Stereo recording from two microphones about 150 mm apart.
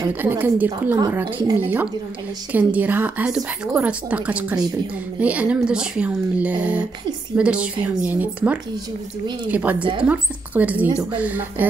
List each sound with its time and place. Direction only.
0.2 s speech: 10° right (ahead or behind)
0.9 s a woman's voice: 25° right (ahead or behind)
2.5 s speech: 10° right (ahead or behind)